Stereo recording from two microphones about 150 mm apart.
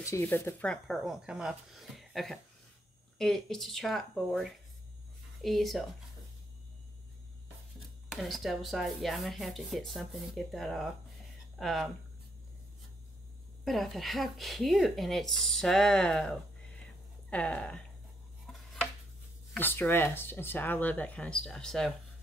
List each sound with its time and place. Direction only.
0.0 s speech: 15° left (ahead or behind); by 5.9 s centre (ahead or behind)
8.1 s speech: centre (ahead or behind)
13.7 s speech: centre (ahead or behind)
18.5 s a sound: centre (ahead or behind)
19.5 s speech: 15° left (ahead or behind)